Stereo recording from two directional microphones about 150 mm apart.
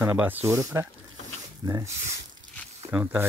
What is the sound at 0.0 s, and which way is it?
Speech, 15° right (ahead or behind).